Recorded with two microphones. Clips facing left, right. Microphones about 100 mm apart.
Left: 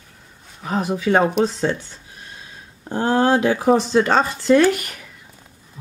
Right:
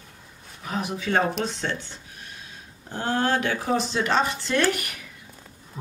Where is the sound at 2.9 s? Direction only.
35° left (ahead or behind).